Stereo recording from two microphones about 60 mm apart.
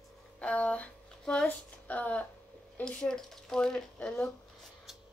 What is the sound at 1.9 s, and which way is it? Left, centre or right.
Speech, left.